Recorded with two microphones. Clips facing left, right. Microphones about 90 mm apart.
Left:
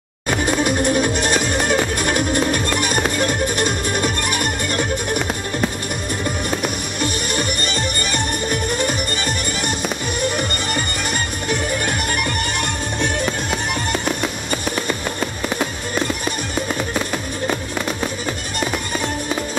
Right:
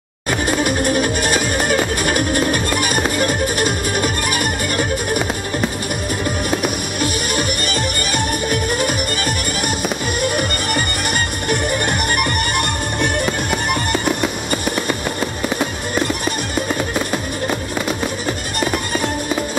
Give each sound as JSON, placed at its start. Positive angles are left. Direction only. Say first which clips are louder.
{"t": 0.3, "sound": "music", "louder": "even", "side_deg": -5}
{"t": 8.6, "sound": "music", "louder": "right 2 dB", "side_deg": -10}
{"t": 10.7, "sound": "music", "louder": "right 2 dB", "side_deg": -65}
{"t": 13.2, "sound": "music", "louder": "right 2 dB", "side_deg": -10}